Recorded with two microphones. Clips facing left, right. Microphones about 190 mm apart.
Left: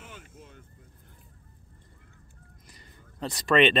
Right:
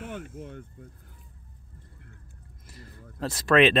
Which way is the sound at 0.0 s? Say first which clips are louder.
Right 11 dB; 55° right (ahead or behind).